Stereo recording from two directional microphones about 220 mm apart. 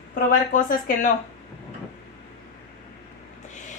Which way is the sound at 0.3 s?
40° left (ahead or behind).